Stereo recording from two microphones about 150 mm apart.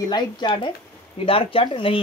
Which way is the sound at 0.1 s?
30° left (ahead or behind).